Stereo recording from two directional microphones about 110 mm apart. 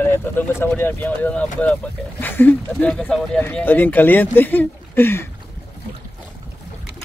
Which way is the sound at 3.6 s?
20° left (ahead or behind).